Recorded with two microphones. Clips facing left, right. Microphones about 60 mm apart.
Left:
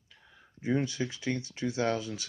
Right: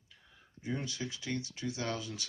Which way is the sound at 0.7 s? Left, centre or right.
Left.